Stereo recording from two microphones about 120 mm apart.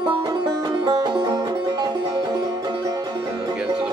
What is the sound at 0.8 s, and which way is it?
Music, 35° right (ahead or behind).